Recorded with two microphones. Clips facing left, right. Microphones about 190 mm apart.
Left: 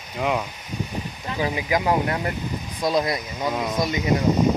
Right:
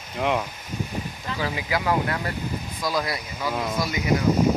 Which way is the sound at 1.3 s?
20° left (ahead or behind).